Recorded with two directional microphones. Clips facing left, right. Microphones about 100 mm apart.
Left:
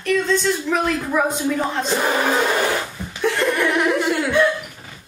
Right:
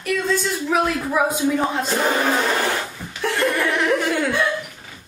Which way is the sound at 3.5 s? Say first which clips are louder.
Left 2 dB; 15° left (ahead or behind).